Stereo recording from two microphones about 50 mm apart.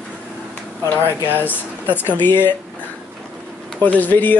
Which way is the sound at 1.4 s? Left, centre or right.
Left.